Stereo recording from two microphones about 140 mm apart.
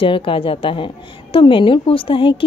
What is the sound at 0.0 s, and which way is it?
A woman's voice, 40° left (ahead or behind).